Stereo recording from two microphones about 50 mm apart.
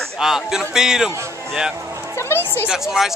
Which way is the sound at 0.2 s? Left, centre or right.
Centre.